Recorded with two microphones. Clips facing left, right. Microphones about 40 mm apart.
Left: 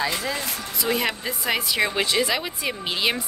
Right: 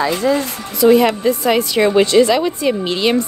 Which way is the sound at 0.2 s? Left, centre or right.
Centre.